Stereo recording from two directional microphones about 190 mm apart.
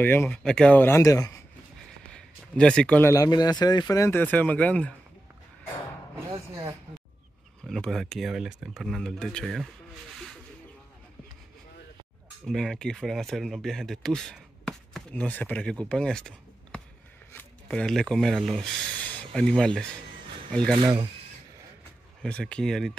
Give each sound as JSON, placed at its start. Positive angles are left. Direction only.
{"t": 0.0, "sound": "speech", "side_deg": 10}
{"t": 2.1, "sound": "speech", "side_deg": 5}
{"t": 6.1, "sound": "a sound", "side_deg": -15}
{"t": 7.6, "sound": "speech", "side_deg": 0}
{"t": 12.4, "sound": "speech", "side_deg": 0}
{"t": 20.8, "sound": "speech", "side_deg": -25}
{"t": 22.2, "sound": "speech", "side_deg": 5}